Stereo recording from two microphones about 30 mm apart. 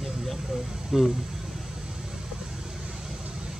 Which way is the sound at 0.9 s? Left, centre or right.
Centre.